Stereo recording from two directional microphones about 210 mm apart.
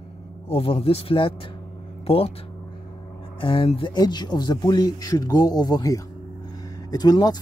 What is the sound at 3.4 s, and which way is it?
Speech, 25° left (ahead or behind).